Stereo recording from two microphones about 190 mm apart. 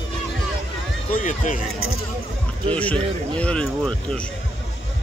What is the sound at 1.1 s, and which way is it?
Speech, 45° left (ahead or behind).